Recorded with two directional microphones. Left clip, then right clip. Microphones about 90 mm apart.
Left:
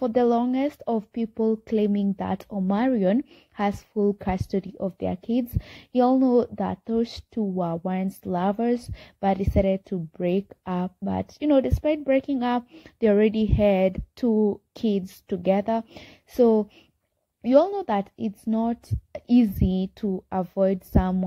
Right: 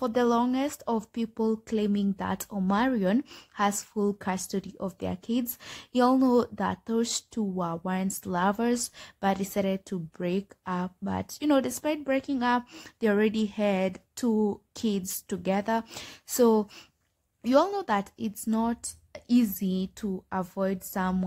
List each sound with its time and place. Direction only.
0.0 s a woman's voice: 25° left (ahead or behind)
7.5 s speech: 30° left (ahead or behind)
10.2 s a woman's voice: 35° left (ahead or behind)
14.3 s speech: 30° right (ahead or behind)
14.8 s speech: 30° left (ahead or behind)
16.0 s a woman's voice: 15° left (ahead or behind); by 21.1 s 40° left (ahead or behind)